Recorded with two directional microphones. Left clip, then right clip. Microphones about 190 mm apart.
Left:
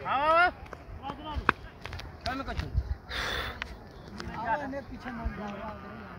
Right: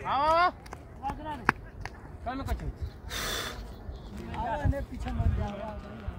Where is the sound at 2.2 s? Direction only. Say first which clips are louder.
Left 1 dB; 40° left (ahead or behind).